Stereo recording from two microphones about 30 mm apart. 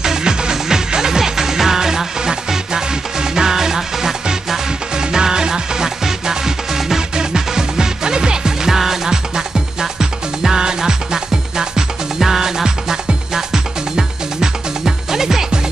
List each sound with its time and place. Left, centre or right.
0.0 s music: right